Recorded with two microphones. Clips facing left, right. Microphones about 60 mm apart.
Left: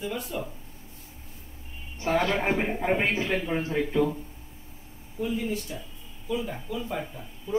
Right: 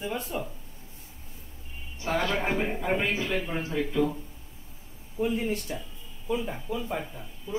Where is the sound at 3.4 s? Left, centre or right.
Left.